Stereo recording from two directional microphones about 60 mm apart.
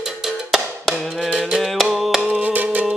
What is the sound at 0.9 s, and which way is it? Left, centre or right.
Music, centre.